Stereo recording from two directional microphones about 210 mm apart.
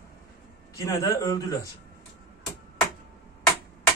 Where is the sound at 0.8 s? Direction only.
15° left (ahead or behind).